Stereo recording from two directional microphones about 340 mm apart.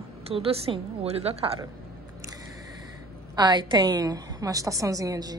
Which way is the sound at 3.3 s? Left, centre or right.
Centre.